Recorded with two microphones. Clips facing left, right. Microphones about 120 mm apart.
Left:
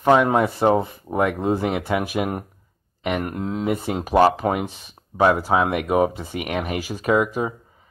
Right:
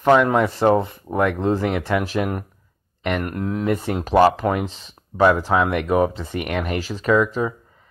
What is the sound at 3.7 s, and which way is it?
Speech, 10° left (ahead or behind).